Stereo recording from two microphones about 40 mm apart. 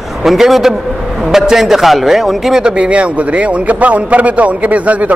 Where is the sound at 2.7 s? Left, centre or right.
Right.